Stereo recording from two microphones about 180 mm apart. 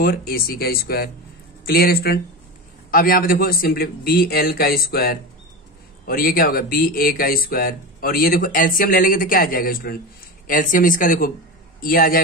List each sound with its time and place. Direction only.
0.0 s a man's voice: 55° left (ahead or behind)